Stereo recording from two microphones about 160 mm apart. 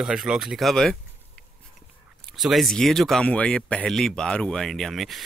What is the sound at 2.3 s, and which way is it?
Speech, centre (ahead or behind).